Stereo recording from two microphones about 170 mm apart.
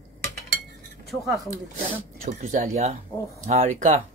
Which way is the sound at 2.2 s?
45° right (ahead or behind).